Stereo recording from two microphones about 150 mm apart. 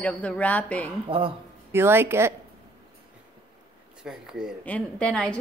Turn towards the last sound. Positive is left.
turn(degrees=5)  # may be behind; listen again after turning